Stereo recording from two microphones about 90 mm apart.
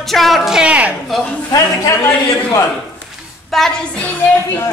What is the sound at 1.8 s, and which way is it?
Speech, 35° left (ahead or behind).